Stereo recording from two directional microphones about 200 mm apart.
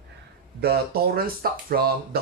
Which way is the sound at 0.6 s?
50° right (ahead or behind).